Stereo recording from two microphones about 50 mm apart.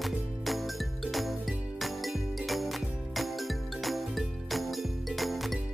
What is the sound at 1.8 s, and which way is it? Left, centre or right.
Music, centre.